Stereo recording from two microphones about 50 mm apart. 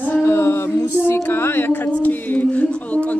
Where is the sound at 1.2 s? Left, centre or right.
Left.